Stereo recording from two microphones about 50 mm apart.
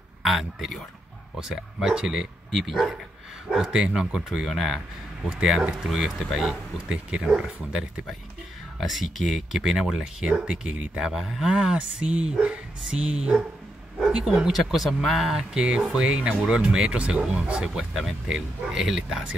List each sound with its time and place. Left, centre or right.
0.2 s speech: centre
2.5 s speech: centre
3.5 s speech: centre
4.5 s speech: centre
5.9 s speech: centre
6.9 s speech: centre
8.7 s speech: centre
11.5 s speech: centre
15.5 s speech: centre
17.9 s speech: centre